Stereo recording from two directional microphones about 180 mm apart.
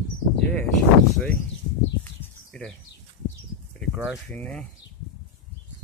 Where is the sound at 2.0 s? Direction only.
5° left (ahead or behind).